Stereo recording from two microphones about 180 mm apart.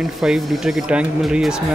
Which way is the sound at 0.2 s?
5° right (ahead or behind).